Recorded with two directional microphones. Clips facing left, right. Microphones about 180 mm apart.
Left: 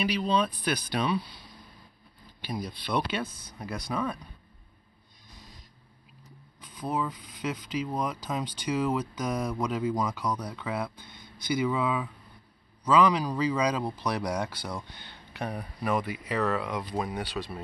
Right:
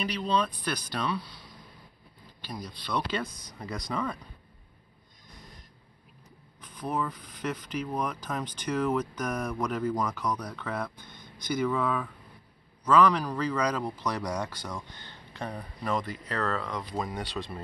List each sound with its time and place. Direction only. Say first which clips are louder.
0.0 s speech: left 2 dB; 10° left (ahead or behind)
0.9 s speech: left 3 dB; 20° left (ahead or behind)
3.1 s speech: even; 5° left (ahead or behind)
6.8 s speech: left 1 dB; 10° left (ahead or behind)